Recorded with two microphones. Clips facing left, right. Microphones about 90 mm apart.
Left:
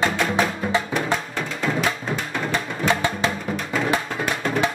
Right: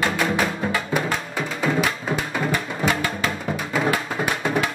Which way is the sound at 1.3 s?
5° right (ahead or behind).